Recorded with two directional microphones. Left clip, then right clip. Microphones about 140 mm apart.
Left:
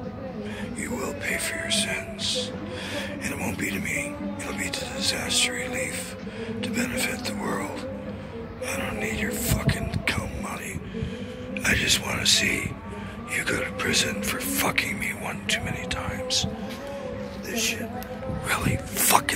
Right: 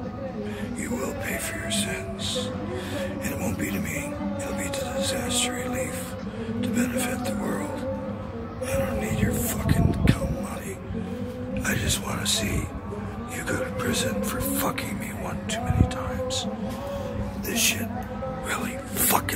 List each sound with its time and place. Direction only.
0.9 s a man's voice: 10° right (ahead or behind)
8.7 s a man's voice: 10° right (ahead or behind)
11.6 s speech: centre (ahead or behind)
17.5 s a woman's voice: 40° right (ahead or behind)
18.5 s a man's voice: 10° right (ahead or behind)